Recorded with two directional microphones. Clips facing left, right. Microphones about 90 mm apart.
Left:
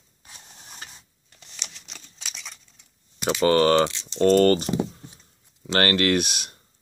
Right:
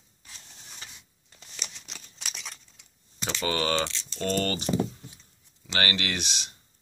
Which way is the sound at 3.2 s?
15° left (ahead or behind).